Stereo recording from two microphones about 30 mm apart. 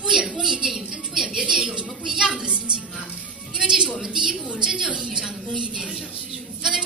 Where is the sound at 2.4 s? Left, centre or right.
Right.